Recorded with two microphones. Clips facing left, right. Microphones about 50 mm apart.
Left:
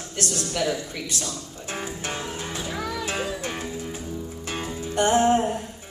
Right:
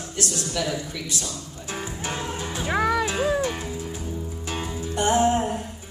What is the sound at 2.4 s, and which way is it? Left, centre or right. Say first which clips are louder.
Music: right 2 dB; centre.